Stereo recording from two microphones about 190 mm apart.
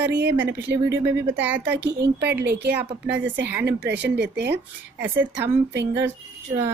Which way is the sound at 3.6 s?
60° right (ahead or behind).